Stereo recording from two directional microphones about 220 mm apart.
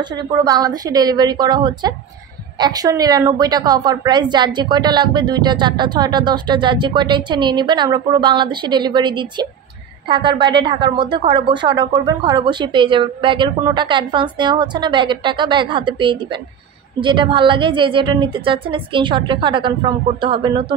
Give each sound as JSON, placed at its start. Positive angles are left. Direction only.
{"t": 0.4, "sound": "a woman's voice", "side_deg": -15}